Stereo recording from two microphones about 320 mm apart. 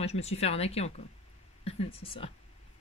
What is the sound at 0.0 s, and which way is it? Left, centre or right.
Speech, centre.